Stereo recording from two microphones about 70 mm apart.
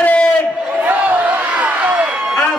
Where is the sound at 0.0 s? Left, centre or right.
Left.